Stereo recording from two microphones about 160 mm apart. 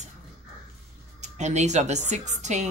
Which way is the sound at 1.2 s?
45° right (ahead or behind).